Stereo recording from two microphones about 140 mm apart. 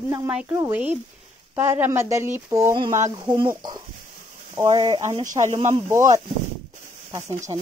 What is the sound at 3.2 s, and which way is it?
Speech, 35° right (ahead or behind).